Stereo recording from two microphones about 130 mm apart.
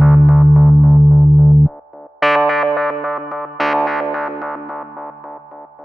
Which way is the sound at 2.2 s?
Centre (ahead or behind).